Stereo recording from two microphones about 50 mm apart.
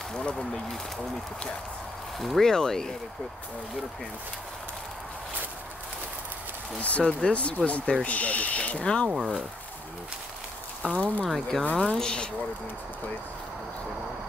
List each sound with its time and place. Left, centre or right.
0.1 s speech: centre
2.1 s speech: centre
6.8 s speech: left
10.8 s speech: left
11.2 s speech: centre
11.7 s speech: centre